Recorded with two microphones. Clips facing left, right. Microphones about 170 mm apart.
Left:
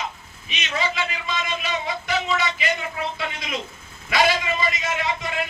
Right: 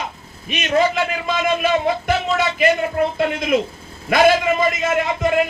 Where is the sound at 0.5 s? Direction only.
50° right (ahead or behind).